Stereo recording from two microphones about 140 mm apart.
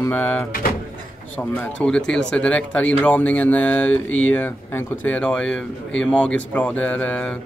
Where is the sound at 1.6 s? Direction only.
5° left (ahead or behind).